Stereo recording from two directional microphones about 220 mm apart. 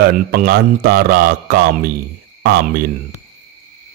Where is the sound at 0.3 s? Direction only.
45° right (ahead or behind).